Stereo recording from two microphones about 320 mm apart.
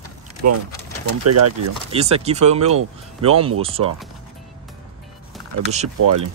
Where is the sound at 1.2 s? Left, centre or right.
Right.